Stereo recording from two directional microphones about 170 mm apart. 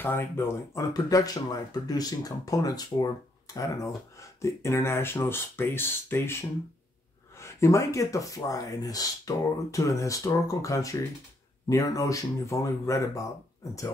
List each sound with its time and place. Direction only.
0.0 s speech: 15° left (ahead or behind)